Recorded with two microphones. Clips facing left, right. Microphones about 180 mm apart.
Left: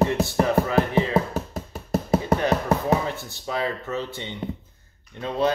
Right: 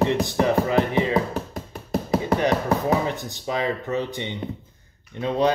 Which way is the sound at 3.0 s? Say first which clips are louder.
Right 3 dB; 15° right (ahead or behind).